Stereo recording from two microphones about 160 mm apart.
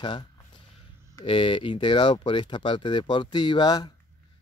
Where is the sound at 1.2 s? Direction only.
30° left (ahead or behind).